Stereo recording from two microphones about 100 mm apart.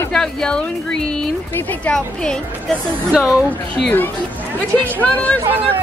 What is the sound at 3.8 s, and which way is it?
Speech, 15° left (ahead or behind).